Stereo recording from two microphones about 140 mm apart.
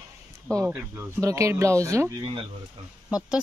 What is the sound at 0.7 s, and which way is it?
Speech, 10° right (ahead or behind).